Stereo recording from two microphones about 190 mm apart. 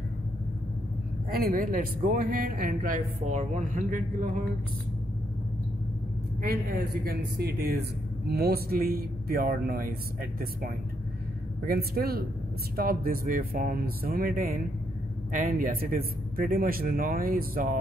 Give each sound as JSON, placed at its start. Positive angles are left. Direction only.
{"t": 1.3, "sound": "a man's voice", "side_deg": -50}
{"t": 6.4, "sound": "a man's voice", "side_deg": -50}
{"t": 11.6, "sound": "a man's voice", "side_deg": -50}